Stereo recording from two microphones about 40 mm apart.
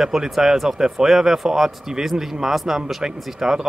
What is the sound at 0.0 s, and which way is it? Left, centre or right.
Speech, centre.